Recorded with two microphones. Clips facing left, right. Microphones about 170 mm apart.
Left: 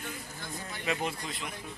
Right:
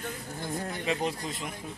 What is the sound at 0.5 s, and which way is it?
Speech, 55° right (ahead or behind).